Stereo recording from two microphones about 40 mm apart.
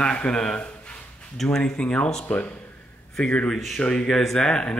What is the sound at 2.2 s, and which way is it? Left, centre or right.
Speech, left.